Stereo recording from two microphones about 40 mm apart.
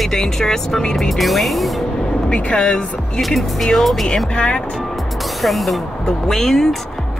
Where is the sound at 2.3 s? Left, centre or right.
Left.